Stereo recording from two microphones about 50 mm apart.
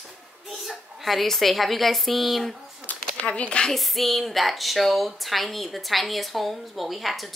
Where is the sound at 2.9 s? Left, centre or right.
Left.